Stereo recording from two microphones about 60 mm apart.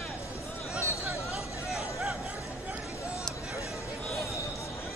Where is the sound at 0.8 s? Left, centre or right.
Left.